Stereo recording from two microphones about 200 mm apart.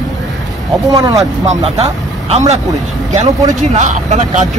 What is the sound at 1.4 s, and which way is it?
Speech, 30° right (ahead or behind).